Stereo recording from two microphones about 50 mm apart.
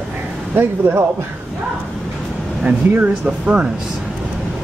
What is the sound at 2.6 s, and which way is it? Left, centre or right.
Speech, right.